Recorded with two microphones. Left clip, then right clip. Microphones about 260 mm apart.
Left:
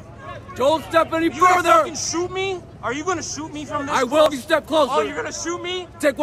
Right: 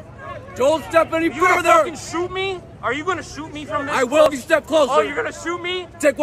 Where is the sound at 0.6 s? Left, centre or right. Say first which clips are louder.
Right 1 dB; centre.